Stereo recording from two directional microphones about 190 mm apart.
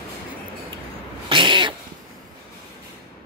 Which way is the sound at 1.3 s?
25° right (ahead or behind).